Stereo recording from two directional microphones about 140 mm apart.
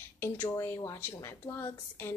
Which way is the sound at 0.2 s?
20° left (ahead or behind).